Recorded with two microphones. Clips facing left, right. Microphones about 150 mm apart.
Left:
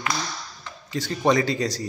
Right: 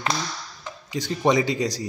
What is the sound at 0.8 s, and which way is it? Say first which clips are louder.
Speech: even; 15° right (ahead or behind).